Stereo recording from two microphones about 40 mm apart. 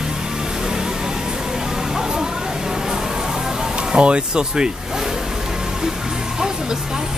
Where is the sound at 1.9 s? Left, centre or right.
Centre.